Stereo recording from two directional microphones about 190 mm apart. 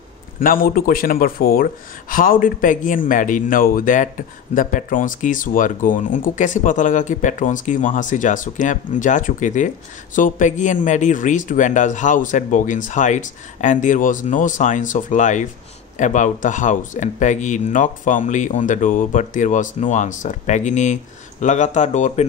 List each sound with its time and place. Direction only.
0.4 s speech: 50° left (ahead or behind)